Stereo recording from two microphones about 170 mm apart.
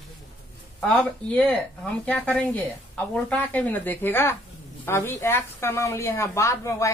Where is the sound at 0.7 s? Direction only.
10° left (ahead or behind).